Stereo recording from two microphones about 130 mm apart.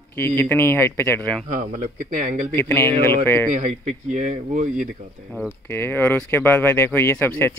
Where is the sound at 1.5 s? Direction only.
85° right.